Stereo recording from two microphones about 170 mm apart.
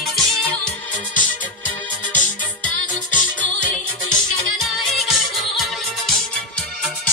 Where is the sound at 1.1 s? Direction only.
50° left (ahead or behind).